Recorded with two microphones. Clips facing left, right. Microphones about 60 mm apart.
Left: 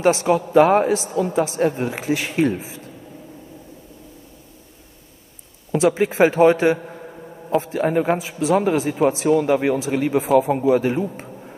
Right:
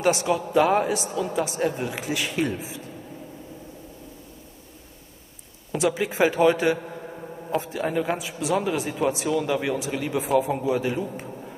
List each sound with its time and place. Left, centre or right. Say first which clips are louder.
0.0 s speech: left 5 dB; left
5.8 s a man's voice: left 6 dB; left